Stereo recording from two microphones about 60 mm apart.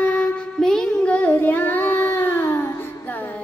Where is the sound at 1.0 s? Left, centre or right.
Left.